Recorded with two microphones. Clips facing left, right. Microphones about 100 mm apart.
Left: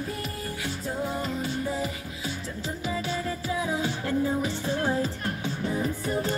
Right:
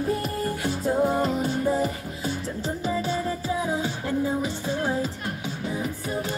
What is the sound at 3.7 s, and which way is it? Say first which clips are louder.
Music: right 1 dB; 20° right (ahead or behind).